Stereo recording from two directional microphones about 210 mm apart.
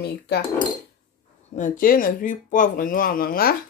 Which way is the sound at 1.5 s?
40° left (ahead or behind).